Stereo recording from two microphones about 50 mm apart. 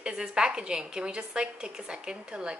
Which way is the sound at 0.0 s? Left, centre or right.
Centre.